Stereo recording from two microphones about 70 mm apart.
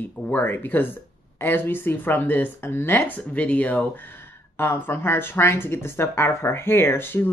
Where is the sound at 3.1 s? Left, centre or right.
Centre.